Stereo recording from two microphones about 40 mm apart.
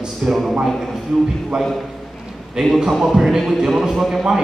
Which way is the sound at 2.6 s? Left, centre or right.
Centre.